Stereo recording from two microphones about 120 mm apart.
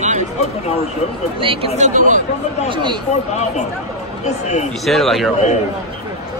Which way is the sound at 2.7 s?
40° right (ahead or behind).